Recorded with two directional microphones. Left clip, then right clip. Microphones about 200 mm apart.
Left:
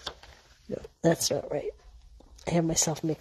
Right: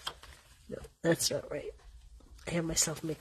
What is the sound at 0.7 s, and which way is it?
Speech, 20° left (ahead or behind).